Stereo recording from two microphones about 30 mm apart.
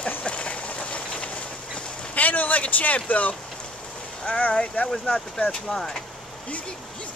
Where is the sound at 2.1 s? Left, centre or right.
Left.